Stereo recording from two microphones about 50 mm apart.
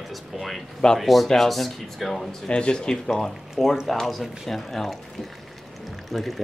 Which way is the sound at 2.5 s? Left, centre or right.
Centre.